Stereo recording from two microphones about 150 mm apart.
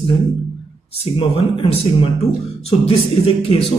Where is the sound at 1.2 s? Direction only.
35° left (ahead or behind).